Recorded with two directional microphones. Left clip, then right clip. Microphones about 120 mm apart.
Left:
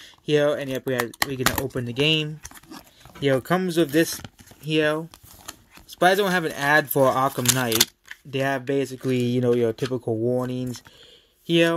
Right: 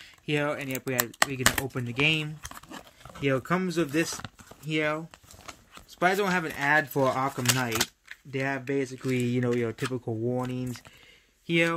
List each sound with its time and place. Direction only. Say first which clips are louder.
0.0 s speech: left 8 dB; 20° left (ahead or behind)
3.4 s speech: left 6 dB; 35° left (ahead or behind)
9.1 s speech: left 6 dB; 30° left (ahead or behind); by 10.4 s 15° left (ahead or behind)
10.4 s speech: left 5 dB; 30° left (ahead or behind)